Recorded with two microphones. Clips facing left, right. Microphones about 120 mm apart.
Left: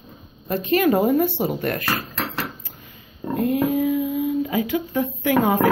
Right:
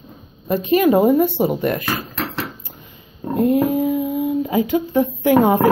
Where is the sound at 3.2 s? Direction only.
25° right (ahead or behind).